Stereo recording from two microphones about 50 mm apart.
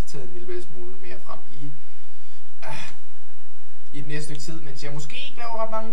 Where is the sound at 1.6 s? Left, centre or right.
Right.